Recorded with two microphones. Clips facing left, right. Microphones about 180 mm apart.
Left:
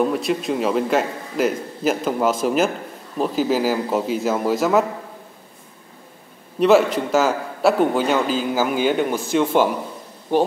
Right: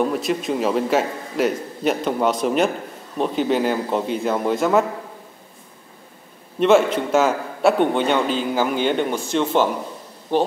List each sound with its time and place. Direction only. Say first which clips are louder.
0.0 s a man's voice: left 1 dB; centre (ahead or behind)
6.6 s a man's voice: even; centre (ahead or behind)